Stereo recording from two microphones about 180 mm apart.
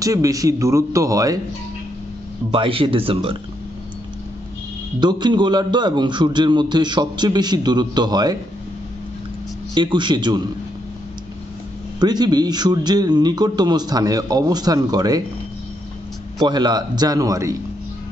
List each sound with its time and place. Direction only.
0.0 s a man's voice: 20° right (ahead or behind)
2.5 s a man's voice: 30° right (ahead or behind)
5.0 s a man's voice: 25° right (ahead or behind)
9.8 s a man's voice: 25° right (ahead or behind)
12.0 s a man's voice: 25° right (ahead or behind)
16.4 s a man's voice: 25° right (ahead or behind)